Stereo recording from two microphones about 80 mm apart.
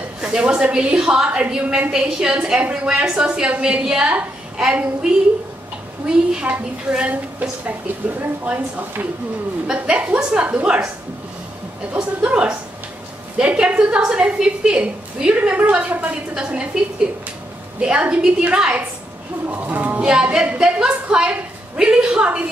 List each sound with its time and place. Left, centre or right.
0.2 s a woman's voice: centre
6.0 s a woman's voice: centre
11.9 s a woman's voice: centre
17.7 s a woman's voice: centre